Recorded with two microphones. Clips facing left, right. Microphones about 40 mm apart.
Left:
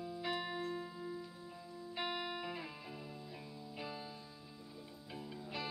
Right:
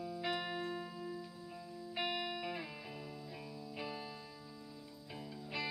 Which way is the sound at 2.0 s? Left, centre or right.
Centre.